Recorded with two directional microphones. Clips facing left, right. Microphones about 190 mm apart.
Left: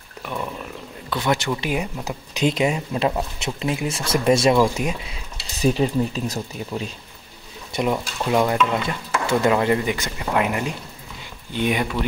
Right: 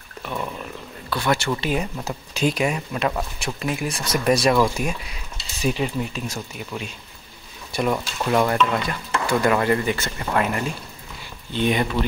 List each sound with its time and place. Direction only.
1.1 s speech: 20° left (ahead or behind)
5.6 s speech: 35° left (ahead or behind)
7.7 s speech: 20° left (ahead or behind)
9.2 s speech: 25° left (ahead or behind)